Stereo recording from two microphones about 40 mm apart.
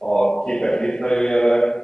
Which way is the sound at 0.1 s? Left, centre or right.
Left.